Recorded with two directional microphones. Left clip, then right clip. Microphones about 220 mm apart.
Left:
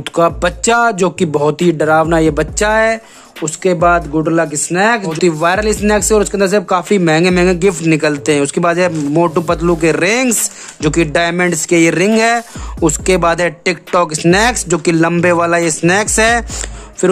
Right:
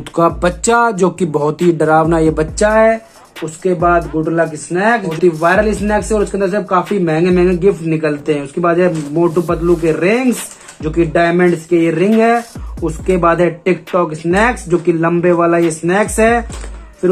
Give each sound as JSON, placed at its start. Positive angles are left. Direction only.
{"t": 0.1, "sound": "speech", "side_deg": 30}
{"t": 2.6, "sound": "speech", "side_deg": 55}